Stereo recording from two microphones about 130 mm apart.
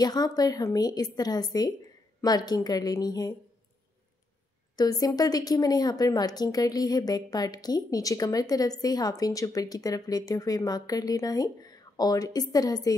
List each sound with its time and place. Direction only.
0.0 s a woman's voice: 30° left (ahead or behind)
4.7 s a woman's voice: 30° left (ahead or behind)